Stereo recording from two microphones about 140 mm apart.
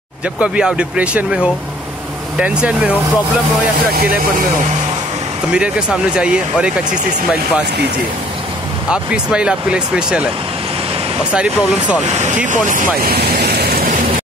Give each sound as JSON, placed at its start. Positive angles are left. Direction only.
{"t": 0.4, "sound": "speech", "side_deg": -5}
{"t": 5.5, "sound": "speech", "side_deg": -5}
{"t": 8.9, "sound": "speech", "side_deg": -5}
{"t": 11.3, "sound": "speech", "side_deg": -10}
{"t": 12.1, "sound": "speech", "side_deg": -55}
{"t": 12.4, "sound": "speech", "side_deg": -65}